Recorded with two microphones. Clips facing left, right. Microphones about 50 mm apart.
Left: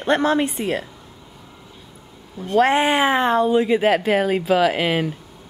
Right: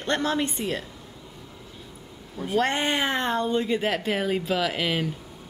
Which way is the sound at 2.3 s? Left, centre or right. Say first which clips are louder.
Left 8 dB; centre.